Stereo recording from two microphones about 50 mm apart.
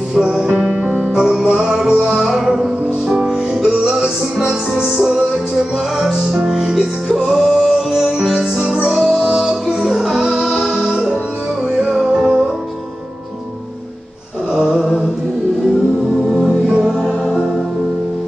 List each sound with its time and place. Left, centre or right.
0.1 s music: centre
2.2 s music: centre
3.2 s music: centre
8.3 s music: centre
12.1 s music: centre
14.5 s a sound: centre
16.3 s music: centre